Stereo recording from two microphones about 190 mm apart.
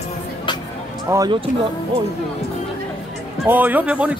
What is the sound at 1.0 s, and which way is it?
Speech, 20° right (ahead or behind).